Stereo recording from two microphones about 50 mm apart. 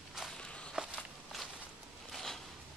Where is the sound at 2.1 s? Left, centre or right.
Centre.